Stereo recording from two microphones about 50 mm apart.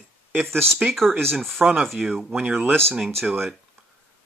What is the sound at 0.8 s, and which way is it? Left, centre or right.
Speech, right.